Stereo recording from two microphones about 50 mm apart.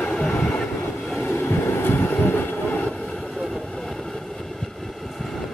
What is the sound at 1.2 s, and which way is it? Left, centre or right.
Train, left.